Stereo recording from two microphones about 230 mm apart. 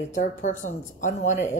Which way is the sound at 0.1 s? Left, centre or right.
Left.